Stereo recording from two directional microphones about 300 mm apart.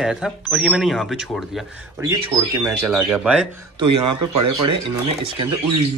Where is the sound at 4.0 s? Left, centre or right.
Right.